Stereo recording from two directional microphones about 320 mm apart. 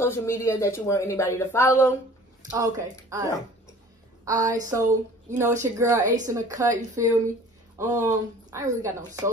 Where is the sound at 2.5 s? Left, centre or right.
Centre.